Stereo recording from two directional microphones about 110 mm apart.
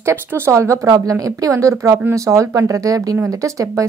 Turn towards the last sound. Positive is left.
turn(degrees=-30)  # may be behind; listen again after turning